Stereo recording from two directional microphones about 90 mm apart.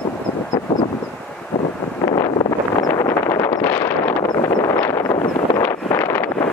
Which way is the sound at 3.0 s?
30° left (ahead or behind).